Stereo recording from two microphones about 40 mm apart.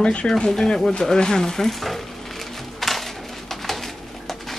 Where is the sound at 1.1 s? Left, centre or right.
Centre.